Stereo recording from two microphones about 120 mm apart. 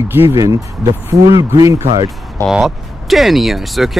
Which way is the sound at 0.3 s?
25° right (ahead or behind).